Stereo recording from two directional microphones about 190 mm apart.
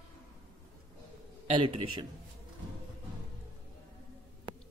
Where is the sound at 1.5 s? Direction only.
25° right (ahead or behind).